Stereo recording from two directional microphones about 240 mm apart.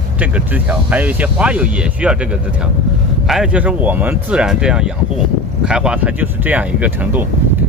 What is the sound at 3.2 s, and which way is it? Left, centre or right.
Speech, centre.